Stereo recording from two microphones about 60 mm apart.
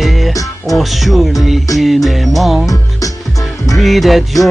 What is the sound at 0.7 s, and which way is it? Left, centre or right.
Speech, centre.